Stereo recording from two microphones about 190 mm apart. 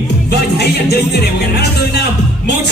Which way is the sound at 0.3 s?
60° left (ahead or behind).